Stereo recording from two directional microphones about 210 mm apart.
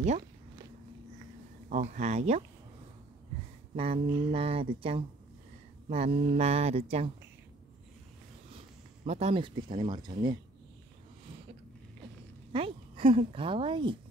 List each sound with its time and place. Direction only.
1.7 s speech: 35° right (ahead or behind)
3.7 s speech: 25° right (ahead or behind)
9.0 s speech: 30° right (ahead or behind)
12.5 s speech: 25° right (ahead or behind)